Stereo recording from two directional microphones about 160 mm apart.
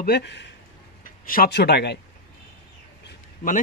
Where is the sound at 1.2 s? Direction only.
65° left (ahead or behind); by 2.0 s 90° left.